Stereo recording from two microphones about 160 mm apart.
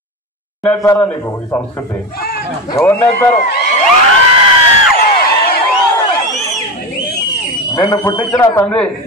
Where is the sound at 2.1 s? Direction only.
70° left (ahead or behind).